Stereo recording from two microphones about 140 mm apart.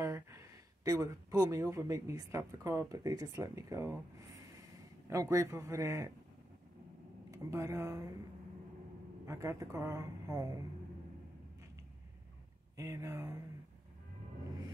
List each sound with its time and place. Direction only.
0.0 s a man's voice: 20° right (ahead or behind)
7.2 s speech: 20° right (ahead or behind)
9.2 s a man's voice: 20° right (ahead or behind)
12.7 s a man's voice: 25° right (ahead or behind)